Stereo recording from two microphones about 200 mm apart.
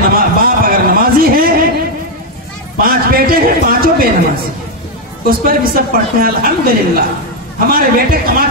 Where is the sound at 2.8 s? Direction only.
50° right (ahead or behind).